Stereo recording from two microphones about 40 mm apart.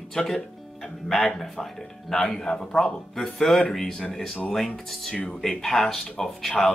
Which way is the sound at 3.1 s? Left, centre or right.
Centre.